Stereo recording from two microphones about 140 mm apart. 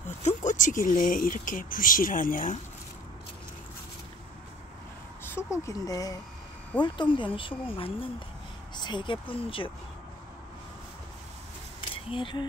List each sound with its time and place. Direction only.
0.2 s speech: 60° left (ahead or behind)
5.2 s speech: 20° left (ahead or behind); by 9.7 s 40° left (ahead or behind)
12.1 s speech: 35° left (ahead or behind)